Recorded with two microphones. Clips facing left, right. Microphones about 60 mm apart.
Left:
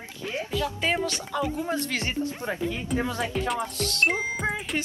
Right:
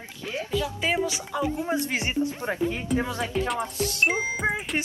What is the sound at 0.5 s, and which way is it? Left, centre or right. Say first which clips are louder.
Speech: right 1 dB; centre.